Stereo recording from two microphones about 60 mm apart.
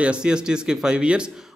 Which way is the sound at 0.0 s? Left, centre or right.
Centre.